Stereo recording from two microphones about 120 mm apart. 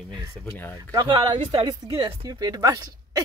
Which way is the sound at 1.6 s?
40° right (ahead or behind).